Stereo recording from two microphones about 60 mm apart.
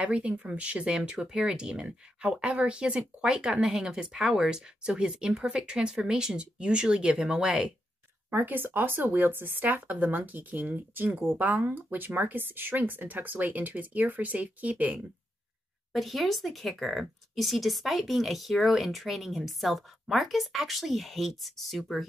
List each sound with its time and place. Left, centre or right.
0.0 s speech: centre
8.3 s speech: right
15.9 s speech: centre